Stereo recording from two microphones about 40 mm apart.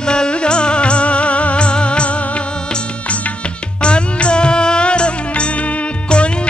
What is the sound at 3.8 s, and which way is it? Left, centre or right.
Music, left.